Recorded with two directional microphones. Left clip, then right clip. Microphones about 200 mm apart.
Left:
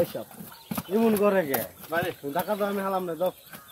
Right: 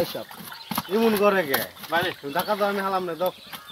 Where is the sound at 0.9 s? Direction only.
20° right (ahead or behind).